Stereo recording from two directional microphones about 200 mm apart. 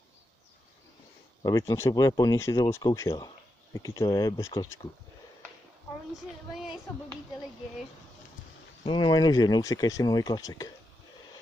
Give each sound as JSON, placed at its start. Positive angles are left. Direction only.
{"t": 1.4, "sound": "speech", "side_deg": 20}
{"t": 6.6, "sound": "speech", "side_deg": 0}
{"t": 8.8, "sound": "speech", "side_deg": 25}